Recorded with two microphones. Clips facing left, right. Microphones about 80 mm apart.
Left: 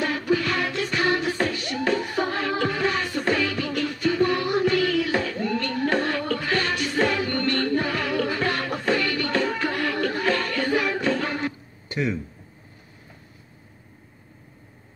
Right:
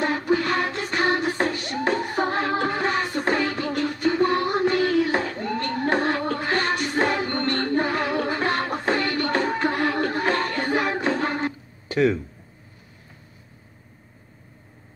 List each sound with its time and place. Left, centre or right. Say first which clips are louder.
0.0 s music: right 1 dB; right